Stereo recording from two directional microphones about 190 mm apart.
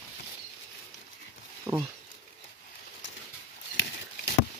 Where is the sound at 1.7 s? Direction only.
15° right (ahead or behind).